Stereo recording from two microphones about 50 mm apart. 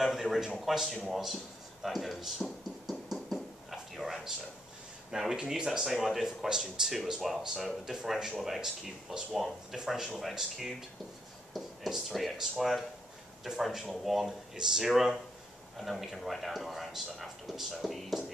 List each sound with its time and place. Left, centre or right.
0.0 s speech: centre
1.1 s a sound: centre
5.1 s speech: centre